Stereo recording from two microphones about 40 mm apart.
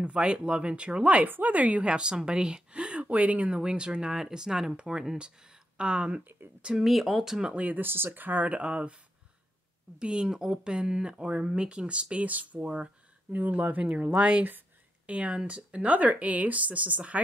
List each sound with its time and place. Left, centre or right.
0.0 s speech: right
1.9 s speech: right
3.0 s speech: right
3.4 s speech: right
6.8 s speech: centre
7.5 s speech: right
7.8 s speech: right
8.1 s speech: right
8.5 s speech: right
13.3 s speech: right
14.1 s speech: right